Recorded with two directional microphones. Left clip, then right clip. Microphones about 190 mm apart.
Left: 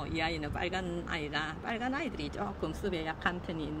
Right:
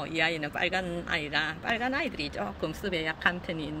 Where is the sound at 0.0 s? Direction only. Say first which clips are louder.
Right 6 dB; 20° right (ahead or behind).